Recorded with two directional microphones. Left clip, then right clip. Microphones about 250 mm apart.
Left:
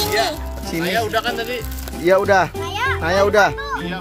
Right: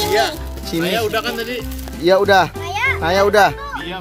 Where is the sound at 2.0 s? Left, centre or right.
Centre.